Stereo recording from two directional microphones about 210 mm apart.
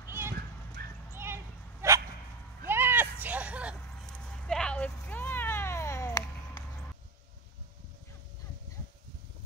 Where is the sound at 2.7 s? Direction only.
10° right (ahead or behind); by 6.7 s 15° left (ahead or behind).